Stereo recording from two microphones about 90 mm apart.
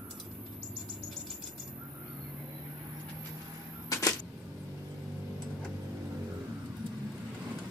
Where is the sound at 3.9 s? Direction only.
35° left (ahead or behind).